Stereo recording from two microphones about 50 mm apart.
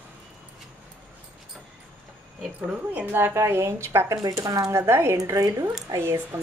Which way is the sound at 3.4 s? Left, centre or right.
Right.